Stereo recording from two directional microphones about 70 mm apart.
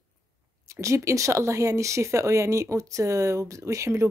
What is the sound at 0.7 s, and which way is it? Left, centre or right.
A woman's voice, right.